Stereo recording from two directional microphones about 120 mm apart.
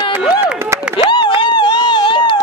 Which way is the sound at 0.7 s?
25° right (ahead or behind).